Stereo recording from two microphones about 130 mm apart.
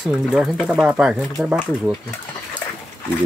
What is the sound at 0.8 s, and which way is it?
Speech, 10° right (ahead or behind).